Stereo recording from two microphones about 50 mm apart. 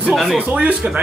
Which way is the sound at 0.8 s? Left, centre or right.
Right.